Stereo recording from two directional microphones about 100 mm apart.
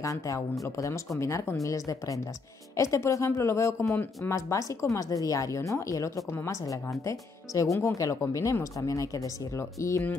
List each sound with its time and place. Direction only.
0.0 s speech: 35° left (ahead or behind)